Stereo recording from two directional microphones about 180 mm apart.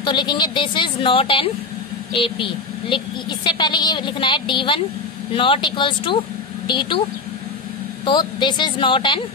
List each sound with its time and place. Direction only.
0.0 s a woman's voice: 25° left (ahead or behind)
8.0 s a woman's voice: 25° left (ahead or behind)